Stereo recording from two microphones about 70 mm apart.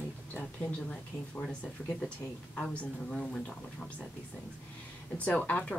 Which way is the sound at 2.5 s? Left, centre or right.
Centre.